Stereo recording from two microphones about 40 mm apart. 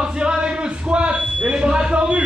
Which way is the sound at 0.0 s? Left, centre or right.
Right.